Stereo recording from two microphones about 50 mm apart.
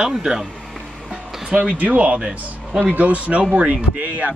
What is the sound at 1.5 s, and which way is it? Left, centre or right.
Speech, right.